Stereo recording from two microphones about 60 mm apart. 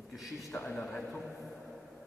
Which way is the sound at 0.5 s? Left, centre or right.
Left.